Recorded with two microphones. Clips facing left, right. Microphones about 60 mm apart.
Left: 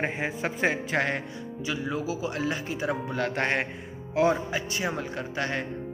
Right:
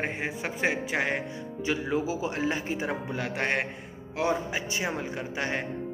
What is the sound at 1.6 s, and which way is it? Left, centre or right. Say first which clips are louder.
Speech: right 3 dB; right.